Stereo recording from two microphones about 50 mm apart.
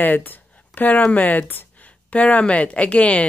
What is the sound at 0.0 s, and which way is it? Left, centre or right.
Speech, left.